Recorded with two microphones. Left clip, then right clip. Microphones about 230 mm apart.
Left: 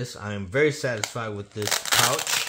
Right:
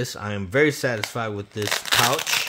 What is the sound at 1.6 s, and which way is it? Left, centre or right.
Crumpling, centre.